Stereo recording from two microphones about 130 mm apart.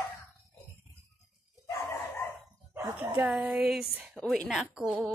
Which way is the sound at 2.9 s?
10° right (ahead or behind).